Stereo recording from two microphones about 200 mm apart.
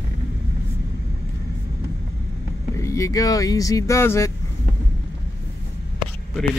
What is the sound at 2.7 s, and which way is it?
Speech, 15° left (ahead or behind).